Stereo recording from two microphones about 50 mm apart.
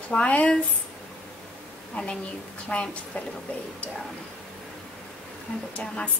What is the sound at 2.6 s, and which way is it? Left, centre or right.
Speech, left.